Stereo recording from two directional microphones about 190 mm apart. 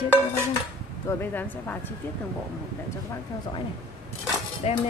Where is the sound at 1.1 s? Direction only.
10° left (ahead or behind).